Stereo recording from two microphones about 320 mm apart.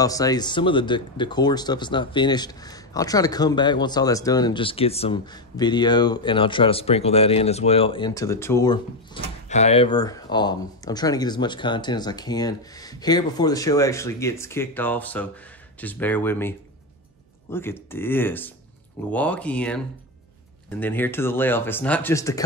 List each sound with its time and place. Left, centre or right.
0.0 s speech: centre